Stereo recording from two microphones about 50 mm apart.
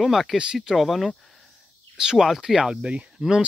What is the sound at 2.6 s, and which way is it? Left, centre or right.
Speech, right.